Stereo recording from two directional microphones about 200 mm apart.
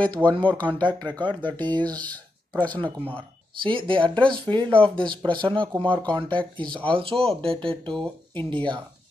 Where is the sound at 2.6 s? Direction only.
5° left (ahead or behind).